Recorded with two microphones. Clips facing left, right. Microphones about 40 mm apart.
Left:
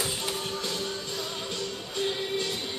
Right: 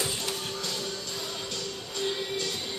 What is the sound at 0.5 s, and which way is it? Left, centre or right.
Music, centre.